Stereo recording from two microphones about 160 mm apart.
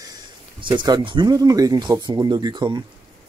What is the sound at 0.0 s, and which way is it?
Speech, 25° right (ahead or behind).